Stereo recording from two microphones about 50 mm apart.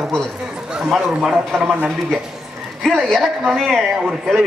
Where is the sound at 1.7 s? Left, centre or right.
Right.